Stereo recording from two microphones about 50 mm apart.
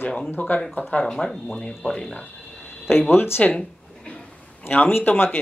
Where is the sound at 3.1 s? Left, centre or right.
Left.